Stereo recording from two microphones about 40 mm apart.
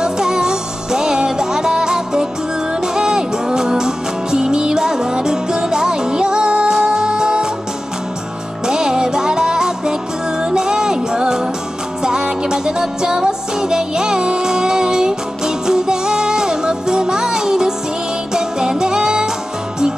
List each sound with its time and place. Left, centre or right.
0.0 s music: centre
8.6 s music: centre